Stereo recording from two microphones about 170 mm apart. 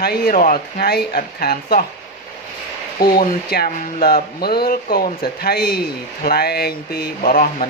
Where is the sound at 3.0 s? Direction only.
60° left (ahead or behind).